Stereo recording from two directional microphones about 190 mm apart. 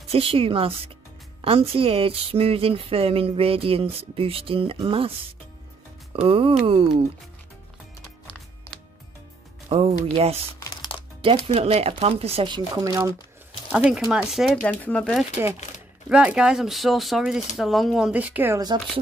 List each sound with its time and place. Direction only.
0.1 s speech: 30° right (ahead or behind)
6.1 s speech: 30° right (ahead or behind)
9.7 s speech: 30° right (ahead or behind)
11.4 s speech: 30° right (ahead or behind)
13.7 s speech: 5° right (ahead or behind)
14.6 s speech: 10° left (ahead or behind)
16.1 s speech: 5° right (ahead or behind)